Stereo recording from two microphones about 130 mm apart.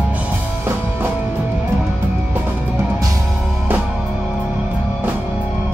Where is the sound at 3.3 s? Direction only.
Centre (ahead or behind).